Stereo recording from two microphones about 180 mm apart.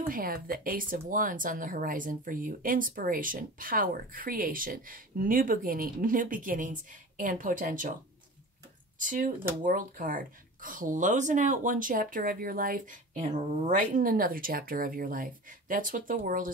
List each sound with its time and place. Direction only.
0.1 s speech: 55° right (ahead or behind)
9.0 s speech: 50° right (ahead or behind)